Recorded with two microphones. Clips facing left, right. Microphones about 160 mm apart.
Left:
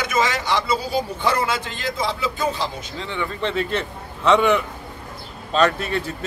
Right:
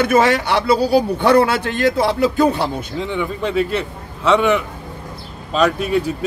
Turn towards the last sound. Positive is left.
turn(degrees=-10)  # may be behind; listen again after turning